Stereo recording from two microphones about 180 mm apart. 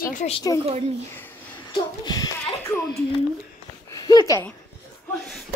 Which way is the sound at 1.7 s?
20° left (ahead or behind).